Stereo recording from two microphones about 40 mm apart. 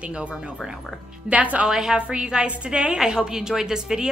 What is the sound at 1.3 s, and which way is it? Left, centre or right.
Speech, right.